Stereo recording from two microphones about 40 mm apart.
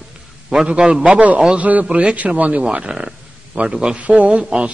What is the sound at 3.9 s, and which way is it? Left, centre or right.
Speech, right.